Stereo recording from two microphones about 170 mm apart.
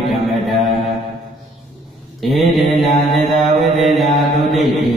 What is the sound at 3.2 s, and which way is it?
Mantra, 55° right (ahead or behind).